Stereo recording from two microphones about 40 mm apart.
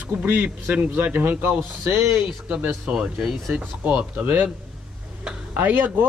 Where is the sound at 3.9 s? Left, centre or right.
Right.